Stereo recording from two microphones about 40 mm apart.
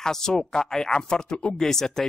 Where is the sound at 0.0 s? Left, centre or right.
Centre.